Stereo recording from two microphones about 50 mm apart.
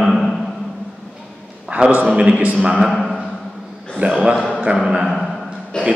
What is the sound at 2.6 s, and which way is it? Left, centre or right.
Speech, centre.